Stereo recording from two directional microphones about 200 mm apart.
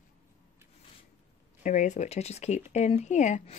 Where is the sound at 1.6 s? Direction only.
40° left (ahead or behind).